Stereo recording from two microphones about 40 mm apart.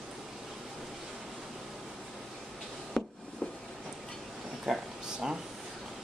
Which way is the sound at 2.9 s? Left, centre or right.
Left.